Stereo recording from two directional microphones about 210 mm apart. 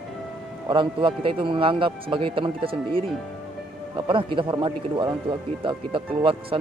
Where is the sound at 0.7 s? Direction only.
25° right (ahead or behind).